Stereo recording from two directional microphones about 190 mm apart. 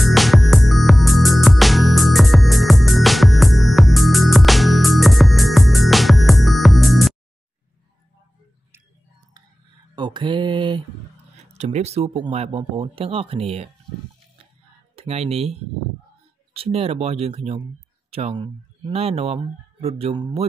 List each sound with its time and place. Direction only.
0.0 s music: centre (ahead or behind)
9.9 s mantra: 25° right (ahead or behind)
11.5 s speech: 35° right (ahead or behind)
15.0 s speech: 35° right (ahead or behind)
16.5 s speech: 30° right (ahead or behind)